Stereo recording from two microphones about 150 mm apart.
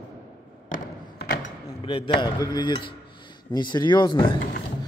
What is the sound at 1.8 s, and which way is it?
Speech, 35° left (ahead or behind).